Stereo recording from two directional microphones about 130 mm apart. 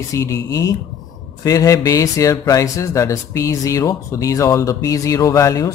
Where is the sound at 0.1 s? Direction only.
25° left (ahead or behind).